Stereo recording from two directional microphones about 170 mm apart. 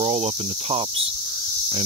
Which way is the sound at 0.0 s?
35° right (ahead or behind).